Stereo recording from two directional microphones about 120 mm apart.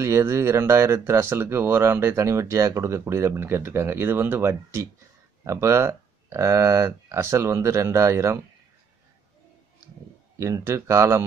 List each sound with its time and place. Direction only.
0.0 s speech: 20° right (ahead or behind)
10.4 s speech: 25° right (ahead or behind)